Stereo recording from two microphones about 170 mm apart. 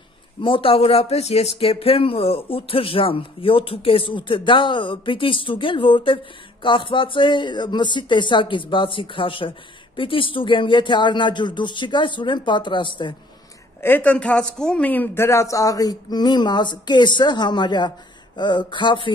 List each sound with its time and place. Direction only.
0.4 s speech: 30° left (ahead or behind)
13.7 s speech: 10° left (ahead or behind); by 19.1 s 30° left (ahead or behind)